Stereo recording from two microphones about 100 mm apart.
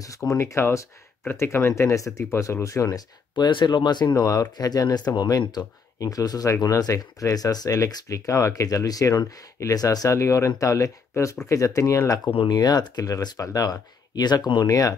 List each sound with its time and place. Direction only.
0.0 s speech: 35° left (ahead or behind)
12.4 s speech: 40° left (ahead or behind)